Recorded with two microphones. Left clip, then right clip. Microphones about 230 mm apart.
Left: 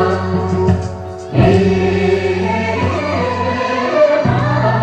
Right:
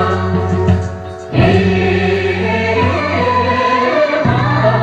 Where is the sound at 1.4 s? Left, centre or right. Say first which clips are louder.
Even; right.